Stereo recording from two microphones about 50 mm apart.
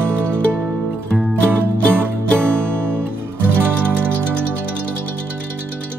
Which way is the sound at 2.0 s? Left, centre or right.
Right.